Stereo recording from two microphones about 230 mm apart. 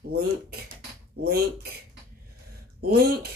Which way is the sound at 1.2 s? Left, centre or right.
Right.